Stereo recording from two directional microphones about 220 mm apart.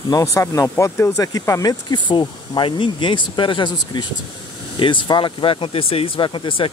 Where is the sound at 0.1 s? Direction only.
15° left (ahead or behind).